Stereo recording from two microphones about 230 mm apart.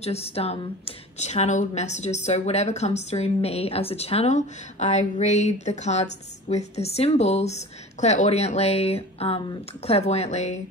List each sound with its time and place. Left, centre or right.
0.0 s speech: left